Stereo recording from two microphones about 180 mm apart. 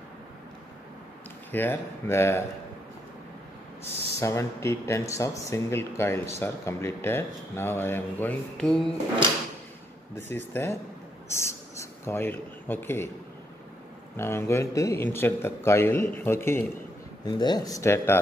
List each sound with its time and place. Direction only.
1.5 s speech: 10° left (ahead or behind)
4.2 s speech: 15° left (ahead or behind)
10.1 s speech: 10° left (ahead or behind)
14.1 s speech: 15° left (ahead or behind)